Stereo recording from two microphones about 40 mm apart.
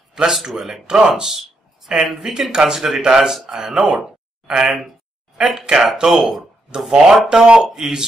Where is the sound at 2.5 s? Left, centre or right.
Centre.